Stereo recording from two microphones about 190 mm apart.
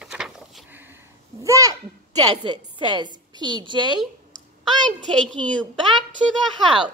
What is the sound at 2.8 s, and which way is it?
A woman's voice, 25° right (ahead or behind).